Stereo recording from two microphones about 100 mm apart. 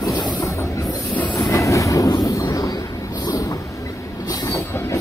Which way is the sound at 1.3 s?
30° left (ahead or behind).